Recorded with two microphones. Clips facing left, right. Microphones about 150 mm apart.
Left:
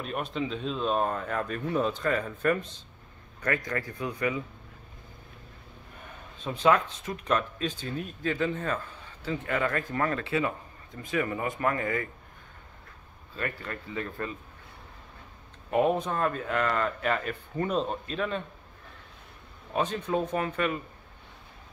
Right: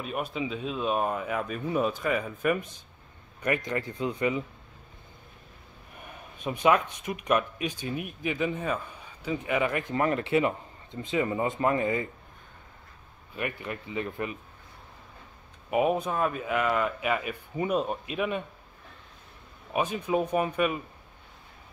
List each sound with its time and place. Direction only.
0.0 s a man's voice: 5° right (ahead or behind); by 4.4 s 20° right (ahead or behind)
6.0 s speech: 15° right (ahead or behind)
13.3 s speech: 15° right (ahead or behind)
15.7 s speech: 5° right (ahead or behind)
19.7 s speech: 10° right (ahead or behind)